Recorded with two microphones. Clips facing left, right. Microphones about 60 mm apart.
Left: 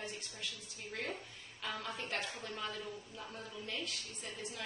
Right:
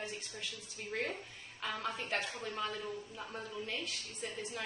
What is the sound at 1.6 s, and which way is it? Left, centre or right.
A woman's voice, centre.